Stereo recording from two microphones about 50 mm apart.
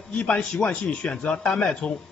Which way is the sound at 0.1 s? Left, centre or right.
Left.